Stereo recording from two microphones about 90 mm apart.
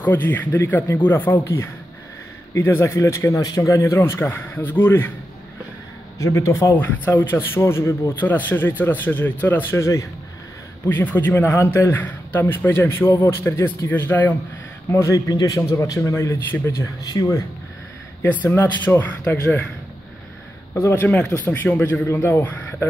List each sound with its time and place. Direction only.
0.0 s a man's voice: 20° left (ahead or behind)
6.1 s a man's voice: 35° left (ahead or behind)
6.7 s a man's voice: 20° left (ahead or behind)
8.1 s a man's voice: 20° left (ahead or behind)
10.9 s a man's voice: 20° left (ahead or behind)
14.9 s speech: 35° left (ahead or behind)
16.8 s speech: 40° left (ahead or behind)
18.2 s a man's voice: 25° left (ahead or behind)
20.9 s a man's voice: 15° left (ahead or behind)